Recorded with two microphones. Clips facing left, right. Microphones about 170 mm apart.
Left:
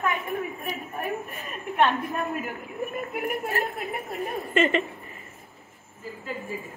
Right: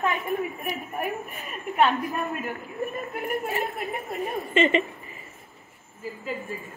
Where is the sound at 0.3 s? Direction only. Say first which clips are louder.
Right 2 dB; 20° right (ahead or behind).